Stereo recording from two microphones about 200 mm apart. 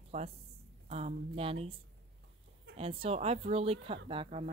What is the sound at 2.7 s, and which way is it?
Speech, 30° right (ahead or behind).